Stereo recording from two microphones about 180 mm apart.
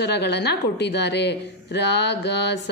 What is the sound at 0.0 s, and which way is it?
A woman's voice, 65° left (ahead or behind).